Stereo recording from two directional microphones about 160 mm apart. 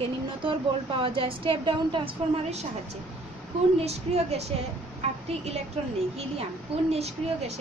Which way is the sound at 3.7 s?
40° right (ahead or behind).